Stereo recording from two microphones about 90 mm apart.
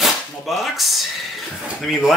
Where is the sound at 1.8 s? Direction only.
Centre (ahead or behind).